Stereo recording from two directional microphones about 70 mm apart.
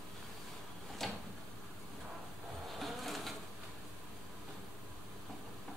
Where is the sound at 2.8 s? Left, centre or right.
Centre.